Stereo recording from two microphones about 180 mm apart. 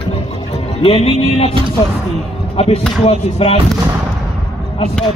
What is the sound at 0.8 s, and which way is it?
Speech, 35° left (ahead or behind).